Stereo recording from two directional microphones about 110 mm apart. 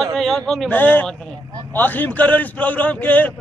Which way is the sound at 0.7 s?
15° left (ahead or behind).